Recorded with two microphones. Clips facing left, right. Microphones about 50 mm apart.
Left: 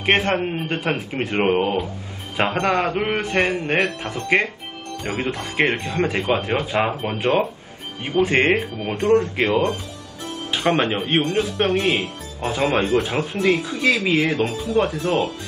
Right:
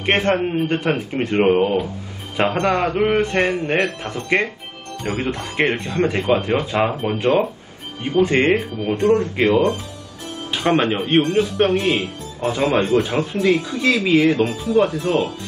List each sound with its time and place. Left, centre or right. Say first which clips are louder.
0.0 s a man's voice: right 1 dB; centre
14.0 s speech: right 4 dB; centre